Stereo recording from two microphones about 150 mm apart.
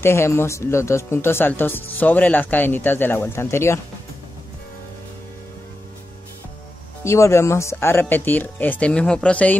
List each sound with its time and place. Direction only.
0.0 s speech: 15° left (ahead or behind)
7.1 s speech: 20° left (ahead or behind)